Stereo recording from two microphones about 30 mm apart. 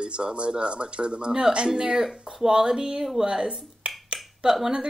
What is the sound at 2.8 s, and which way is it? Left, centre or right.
Speech, centre.